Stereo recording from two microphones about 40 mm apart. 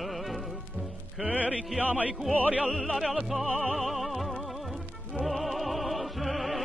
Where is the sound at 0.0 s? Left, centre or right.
Centre.